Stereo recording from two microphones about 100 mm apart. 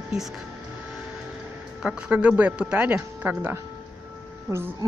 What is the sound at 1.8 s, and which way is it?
A woman's voice, 10° right (ahead or behind).